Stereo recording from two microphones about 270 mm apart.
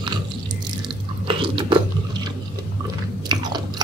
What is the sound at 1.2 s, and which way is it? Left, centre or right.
Chewing, centre.